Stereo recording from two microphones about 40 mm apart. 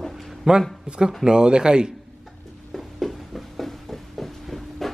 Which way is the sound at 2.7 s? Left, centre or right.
Centre.